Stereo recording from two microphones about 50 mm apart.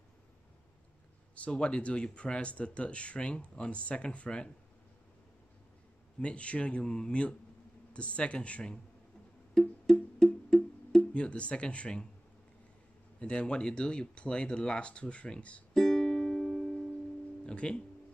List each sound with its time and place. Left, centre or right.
1.3 s speech: left
6.2 s speech: left
9.5 s music: centre
11.0 s speech: left
13.2 s speech: left
15.7 s music: centre
17.5 s speech: centre